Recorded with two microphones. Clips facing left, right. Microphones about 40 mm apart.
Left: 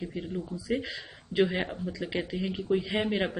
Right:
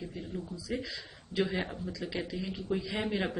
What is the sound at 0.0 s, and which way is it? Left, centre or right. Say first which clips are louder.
Speech: left 5 dB; left.